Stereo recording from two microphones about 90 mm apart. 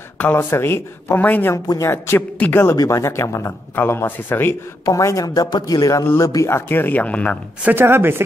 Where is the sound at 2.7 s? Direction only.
35° left (ahead or behind).